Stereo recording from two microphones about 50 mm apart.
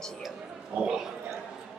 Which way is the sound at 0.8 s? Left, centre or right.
Centre.